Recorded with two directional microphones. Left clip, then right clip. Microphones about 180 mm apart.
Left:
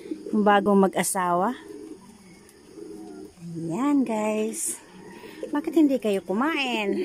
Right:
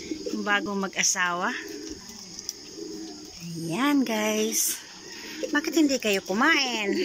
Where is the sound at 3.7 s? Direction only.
15° left (ahead or behind).